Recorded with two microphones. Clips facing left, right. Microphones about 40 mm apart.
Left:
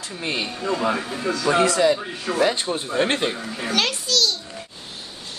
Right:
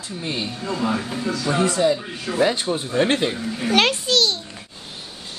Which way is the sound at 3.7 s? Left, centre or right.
Right.